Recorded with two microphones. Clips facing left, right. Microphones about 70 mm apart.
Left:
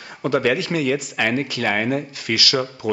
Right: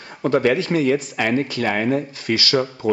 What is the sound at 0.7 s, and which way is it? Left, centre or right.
Speech, left.